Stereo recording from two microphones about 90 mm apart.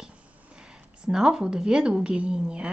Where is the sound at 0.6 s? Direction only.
10° right (ahead or behind).